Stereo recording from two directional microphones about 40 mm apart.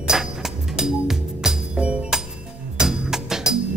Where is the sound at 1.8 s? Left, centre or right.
Right.